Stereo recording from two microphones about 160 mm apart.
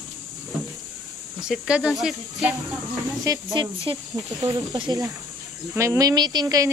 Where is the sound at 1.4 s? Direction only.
5° right (ahead or behind).